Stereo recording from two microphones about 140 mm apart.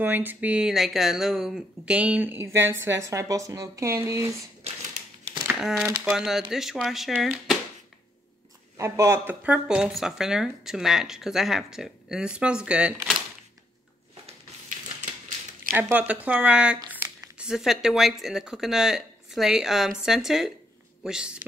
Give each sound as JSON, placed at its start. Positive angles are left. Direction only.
{"t": 0.0, "sound": "speech", "side_deg": -15}
{"t": 5.6, "sound": "speech", "side_deg": -5}
{"t": 8.7, "sound": "speech", "side_deg": -20}
{"t": 15.0, "sound": "typewriter", "side_deg": -70}
{"t": 15.7, "sound": "speech", "side_deg": -10}